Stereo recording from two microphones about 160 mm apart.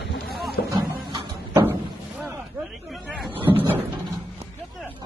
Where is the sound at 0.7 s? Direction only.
30° right (ahead or behind).